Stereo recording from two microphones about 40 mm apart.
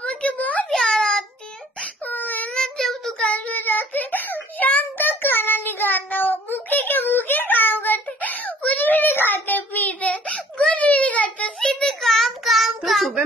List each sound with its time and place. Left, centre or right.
0.0 s a sound: left
0.8 s child singing: centre
2.0 s a sound: left
2.5 s child singing: centre
3.3 s child singing: left
3.5 s whimper: left
4.9 s child singing: left
10.1 s a sound: left
11.6 s child singing: centre